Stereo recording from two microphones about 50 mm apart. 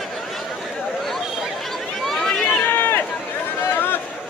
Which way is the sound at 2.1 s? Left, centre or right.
Centre.